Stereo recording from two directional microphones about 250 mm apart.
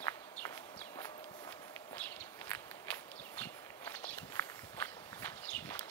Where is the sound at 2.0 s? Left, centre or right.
Centre.